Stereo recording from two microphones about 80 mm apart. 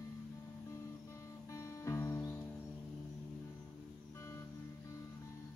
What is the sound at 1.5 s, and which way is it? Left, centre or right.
Music, left.